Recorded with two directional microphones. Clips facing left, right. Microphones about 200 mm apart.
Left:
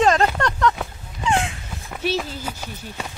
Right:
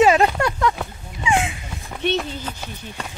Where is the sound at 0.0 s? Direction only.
10° right (ahead or behind); by 3.1 s 10° left (ahead or behind).